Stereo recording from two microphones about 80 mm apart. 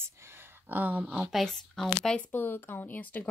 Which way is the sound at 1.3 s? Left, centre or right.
Centre.